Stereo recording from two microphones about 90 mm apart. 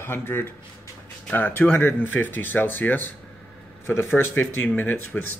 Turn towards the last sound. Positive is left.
turn(degrees=20)  # may be behind; listen again after turning